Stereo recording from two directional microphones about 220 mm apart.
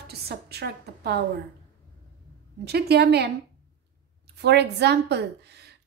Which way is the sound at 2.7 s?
45° right (ahead or behind).